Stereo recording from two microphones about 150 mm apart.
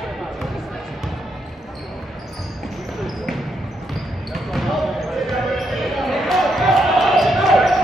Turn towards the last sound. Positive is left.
turn(degrees=0)  # may be behind; listen again after turning